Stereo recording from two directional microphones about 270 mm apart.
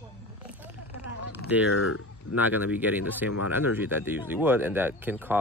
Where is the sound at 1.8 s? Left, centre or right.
Left.